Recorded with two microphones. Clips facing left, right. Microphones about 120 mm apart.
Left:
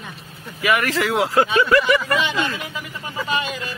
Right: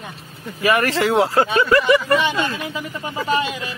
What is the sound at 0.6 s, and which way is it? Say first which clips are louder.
Speech: right 2 dB; 35° right (ahead or behind).